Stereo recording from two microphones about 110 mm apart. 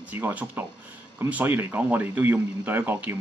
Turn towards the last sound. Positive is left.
turn(degrees=-20)  # may be behind; listen again after turning